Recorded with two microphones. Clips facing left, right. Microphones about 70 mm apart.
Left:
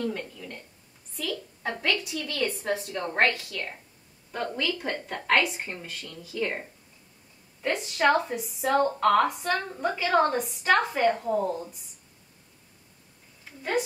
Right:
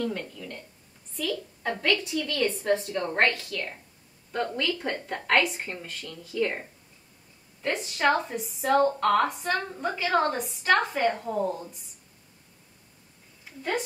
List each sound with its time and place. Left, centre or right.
0.0 s a woman's voice: centre
1.1 s a woman's voice: centre
1.6 s a woman's voice: centre
3.0 s speech: centre
10.7 s a woman's voice: centre
11.0 s speech: centre
13.6 s a woman's voice: centre